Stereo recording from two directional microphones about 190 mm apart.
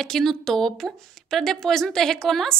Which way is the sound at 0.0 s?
Centre (ahead or behind).